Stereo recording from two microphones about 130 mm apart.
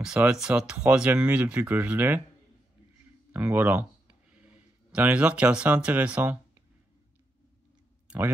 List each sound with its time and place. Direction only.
0.0 s speech: 5° right (ahead or behind)
3.3 s a sound: 10° right (ahead or behind)
4.9 s speech: 10° right (ahead or behind)